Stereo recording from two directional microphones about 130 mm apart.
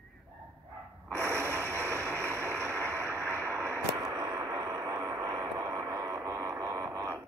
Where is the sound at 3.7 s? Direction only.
25° right (ahead or behind).